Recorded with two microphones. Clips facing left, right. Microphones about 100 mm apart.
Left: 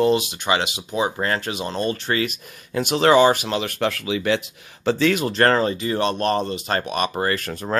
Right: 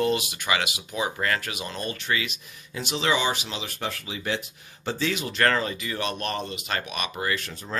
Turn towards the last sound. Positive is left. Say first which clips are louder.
# left 7 dB
turn(degrees=55)  # may be behind; listen again after turning